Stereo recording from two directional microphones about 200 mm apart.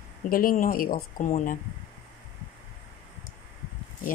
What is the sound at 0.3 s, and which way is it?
Speech, 45° left (ahead or behind).